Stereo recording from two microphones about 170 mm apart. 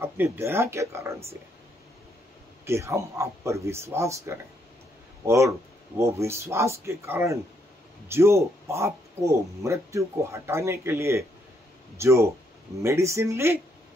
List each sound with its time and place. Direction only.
0.0 s speech: 15° right (ahead or behind)
2.6 s speech: 15° right (ahead or behind)